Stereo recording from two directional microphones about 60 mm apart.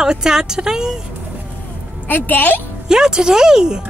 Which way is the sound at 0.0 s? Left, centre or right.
Centre.